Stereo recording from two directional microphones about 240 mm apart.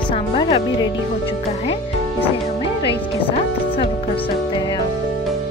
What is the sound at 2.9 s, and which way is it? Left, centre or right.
Speech, left.